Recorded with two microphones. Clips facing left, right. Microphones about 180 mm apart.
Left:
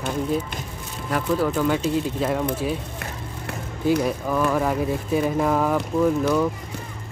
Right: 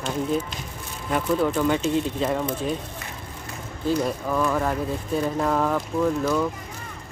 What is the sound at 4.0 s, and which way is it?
Speech, 5° left (ahead or behind).